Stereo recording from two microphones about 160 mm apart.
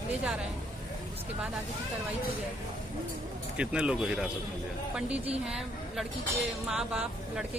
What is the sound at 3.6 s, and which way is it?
Speech, 5° right (ahead or behind).